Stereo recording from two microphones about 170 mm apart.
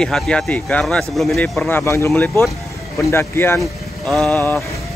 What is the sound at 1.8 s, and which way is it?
Speech, 15° left (ahead or behind).